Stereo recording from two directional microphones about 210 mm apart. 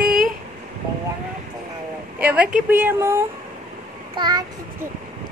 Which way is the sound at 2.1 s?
5° right (ahead or behind).